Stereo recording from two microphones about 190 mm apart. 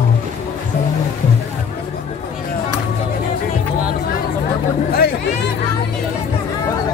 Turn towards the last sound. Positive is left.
turn(degrees=55)  # may be behind; listen again after turning